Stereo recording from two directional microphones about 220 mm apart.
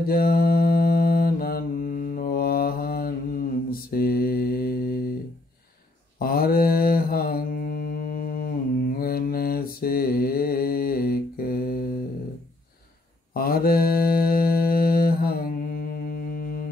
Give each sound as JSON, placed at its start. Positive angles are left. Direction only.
{"t": 0.0, "sound": "mantra", "side_deg": 45}
{"t": 6.1, "sound": "mantra", "side_deg": 40}
{"t": 13.3, "sound": "mantra", "side_deg": 40}